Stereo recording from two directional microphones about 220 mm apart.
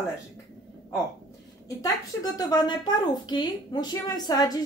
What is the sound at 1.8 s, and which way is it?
A woman's voice, 15° left (ahead or behind).